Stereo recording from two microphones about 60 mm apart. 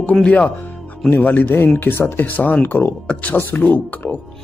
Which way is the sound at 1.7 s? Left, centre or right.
Left.